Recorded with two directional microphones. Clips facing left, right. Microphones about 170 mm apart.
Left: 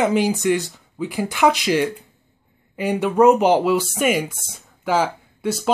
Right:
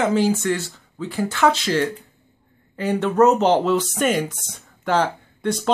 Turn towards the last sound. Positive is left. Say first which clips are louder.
# even
turn(degrees=5)  # may be behind; listen again after turning